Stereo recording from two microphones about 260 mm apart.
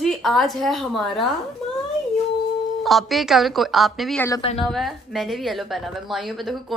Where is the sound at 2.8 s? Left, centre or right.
Centre.